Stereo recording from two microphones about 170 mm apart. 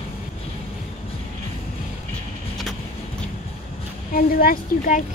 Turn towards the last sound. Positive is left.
turn(degrees=55)  # may be behind; listen again after turning